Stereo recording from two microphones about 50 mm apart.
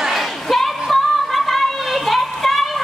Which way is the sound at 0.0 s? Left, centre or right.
Centre.